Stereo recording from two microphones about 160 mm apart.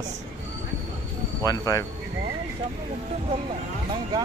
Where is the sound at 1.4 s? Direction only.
20° left (ahead or behind).